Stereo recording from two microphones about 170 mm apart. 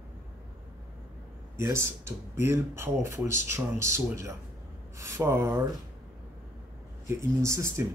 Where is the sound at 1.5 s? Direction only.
15° right (ahead or behind).